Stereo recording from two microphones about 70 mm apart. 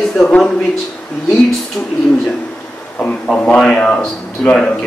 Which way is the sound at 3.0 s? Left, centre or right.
Centre.